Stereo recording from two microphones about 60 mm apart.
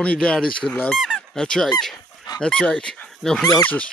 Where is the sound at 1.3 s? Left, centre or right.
Centre.